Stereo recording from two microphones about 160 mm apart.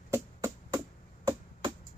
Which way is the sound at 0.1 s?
15° right (ahead or behind).